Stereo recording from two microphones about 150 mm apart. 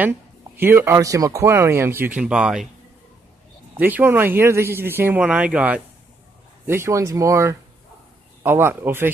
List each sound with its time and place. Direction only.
0.6 s speech: 15° right (ahead or behind)
3.7 s speech: 10° right (ahead or behind)